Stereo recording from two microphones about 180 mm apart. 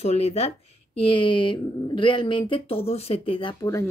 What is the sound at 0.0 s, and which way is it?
Speech, 35° left (ahead or behind).